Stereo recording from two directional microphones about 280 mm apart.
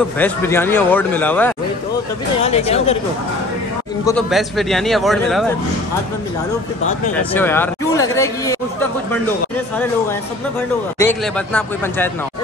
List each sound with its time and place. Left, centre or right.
0.2 s speech: centre
2.4 s speech: left
4.3 s a man's voice: centre
7.2 s speech: centre
11.0 s speech: centre